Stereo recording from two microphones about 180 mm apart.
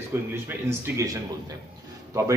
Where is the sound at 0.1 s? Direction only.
15° right (ahead or behind).